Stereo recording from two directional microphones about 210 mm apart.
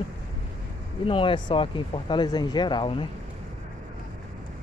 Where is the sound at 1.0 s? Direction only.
25° left (ahead or behind).